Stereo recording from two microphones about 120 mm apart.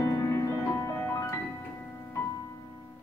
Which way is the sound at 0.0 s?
25° left (ahead or behind).